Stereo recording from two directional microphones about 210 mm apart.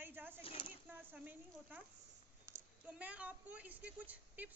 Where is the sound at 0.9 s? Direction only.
10° right (ahead or behind).